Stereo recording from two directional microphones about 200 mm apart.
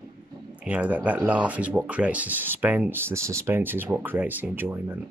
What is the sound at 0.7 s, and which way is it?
Speech, 5° right (ahead or behind).